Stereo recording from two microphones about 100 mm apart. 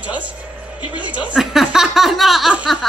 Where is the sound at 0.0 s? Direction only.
15° right (ahead or behind).